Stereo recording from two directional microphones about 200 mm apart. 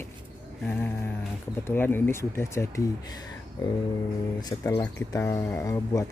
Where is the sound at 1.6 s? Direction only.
10° left (ahead or behind).